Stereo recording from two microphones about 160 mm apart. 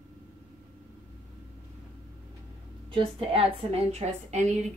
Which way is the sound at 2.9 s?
35° right (ahead or behind).